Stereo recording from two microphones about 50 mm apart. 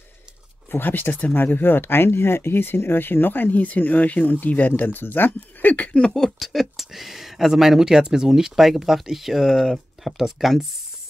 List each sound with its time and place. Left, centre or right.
0.7 s speech: left
5.9 s speech: centre